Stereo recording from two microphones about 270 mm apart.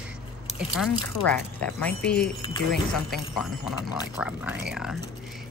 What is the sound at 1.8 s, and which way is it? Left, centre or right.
Speech, centre.